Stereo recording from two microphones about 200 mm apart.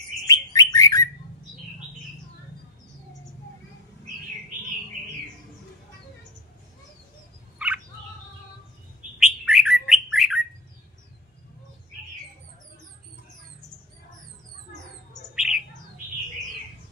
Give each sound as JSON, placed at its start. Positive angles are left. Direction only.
{"t": 0.3, "sound": "bird", "side_deg": 15}
{"t": 7.5, "sound": "bird", "side_deg": -5}
{"t": 9.2, "sound": "bird", "side_deg": -5}
{"t": 15.3, "sound": "bird", "side_deg": -5}